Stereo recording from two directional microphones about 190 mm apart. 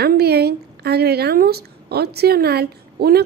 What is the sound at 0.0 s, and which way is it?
A woman's voice, 60° right (ahead or behind).